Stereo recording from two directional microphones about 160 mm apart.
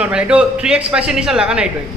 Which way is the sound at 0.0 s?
5° right (ahead or behind).